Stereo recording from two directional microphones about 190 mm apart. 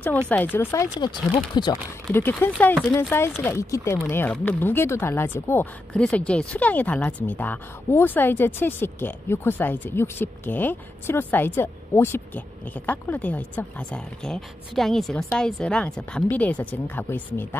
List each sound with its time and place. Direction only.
0.3 s speech: 10° left (ahead or behind)
0.9 s speech: 20° left (ahead or behind)
2.0 s a woman's voice: 10° left (ahead or behind)